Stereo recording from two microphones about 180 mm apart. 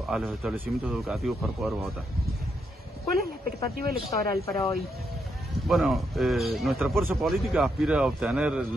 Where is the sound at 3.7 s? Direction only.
55° right (ahead or behind).